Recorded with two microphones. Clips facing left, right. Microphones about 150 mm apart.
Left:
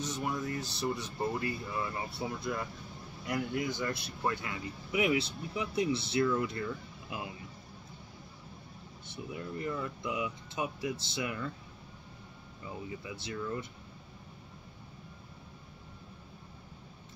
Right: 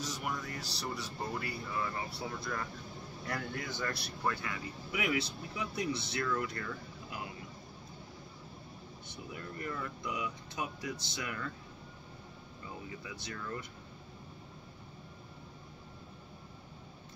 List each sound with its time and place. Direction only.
0.0 s speech: 25° left (ahead or behind)
9.3 s speech: 20° left (ahead or behind)
13.0 s speech: 25° left (ahead or behind)